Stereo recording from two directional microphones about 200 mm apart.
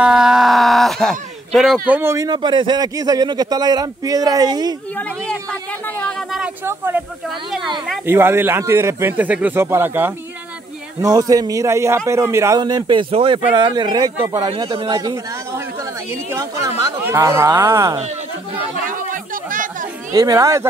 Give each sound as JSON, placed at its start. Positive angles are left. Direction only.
{"t": 0.0, "sound": "speech", "side_deg": -5}
{"t": 4.9, "sound": "speech", "side_deg": 5}
{"t": 6.6, "sound": "speech", "side_deg": -10}
{"t": 7.2, "sound": "a man's voice", "side_deg": 0}
{"t": 18.0, "sound": "chatter", "side_deg": -40}
{"t": 20.1, "sound": "speech", "side_deg": -15}